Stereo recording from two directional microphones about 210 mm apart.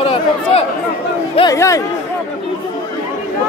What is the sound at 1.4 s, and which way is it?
Speech, 15° left (ahead or behind).